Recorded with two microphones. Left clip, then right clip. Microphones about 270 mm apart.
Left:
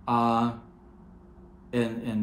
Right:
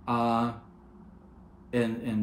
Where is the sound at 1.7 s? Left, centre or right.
Centre.